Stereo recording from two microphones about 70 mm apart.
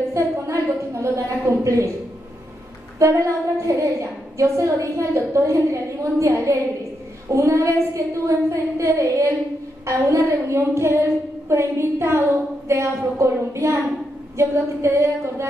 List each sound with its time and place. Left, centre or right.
0.1 s a sound: right
3.6 s child singing: right
14.3 s a woman's voice: right